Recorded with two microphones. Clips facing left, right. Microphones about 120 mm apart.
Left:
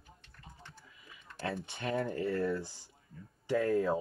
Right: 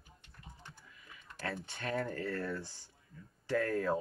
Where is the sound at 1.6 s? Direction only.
25° left (ahead or behind).